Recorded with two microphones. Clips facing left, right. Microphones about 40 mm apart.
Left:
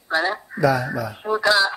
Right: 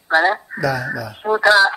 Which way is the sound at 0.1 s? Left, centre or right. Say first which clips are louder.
Right 6 dB; right.